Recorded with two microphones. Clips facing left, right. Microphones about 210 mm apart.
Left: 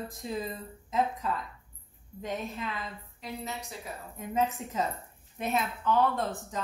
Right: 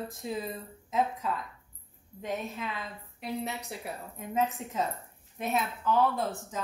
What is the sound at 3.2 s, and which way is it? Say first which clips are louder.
Speech: right 4 dB; 65° right (ahead or behind).